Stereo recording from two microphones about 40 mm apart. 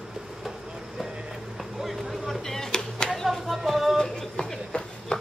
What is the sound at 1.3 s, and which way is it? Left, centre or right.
Vehicle, centre.